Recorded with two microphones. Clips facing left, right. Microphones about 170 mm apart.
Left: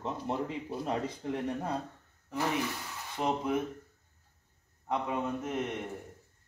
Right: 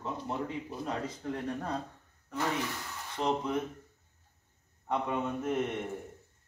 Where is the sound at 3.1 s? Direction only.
5° left (ahead or behind).